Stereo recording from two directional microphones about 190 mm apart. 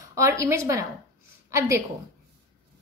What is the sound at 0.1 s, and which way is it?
A woman's voice, 15° right (ahead or behind).